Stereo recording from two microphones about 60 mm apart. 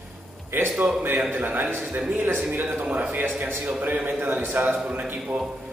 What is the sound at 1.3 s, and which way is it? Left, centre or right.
A man's voice, right.